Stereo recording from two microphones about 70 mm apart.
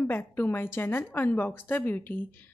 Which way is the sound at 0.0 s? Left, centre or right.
Left.